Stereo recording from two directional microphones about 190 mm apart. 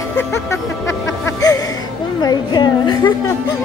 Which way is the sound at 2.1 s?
20° left (ahead or behind).